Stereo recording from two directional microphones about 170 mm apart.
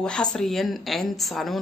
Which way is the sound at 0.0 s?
5° left (ahead or behind).